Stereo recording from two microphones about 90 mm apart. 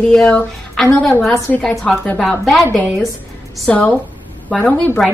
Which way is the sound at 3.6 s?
15° left (ahead or behind).